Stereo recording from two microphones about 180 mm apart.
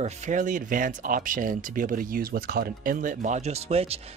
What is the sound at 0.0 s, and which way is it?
Speech, 40° right (ahead or behind).